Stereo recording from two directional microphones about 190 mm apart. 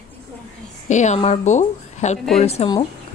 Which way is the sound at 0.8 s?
40° left (ahead or behind).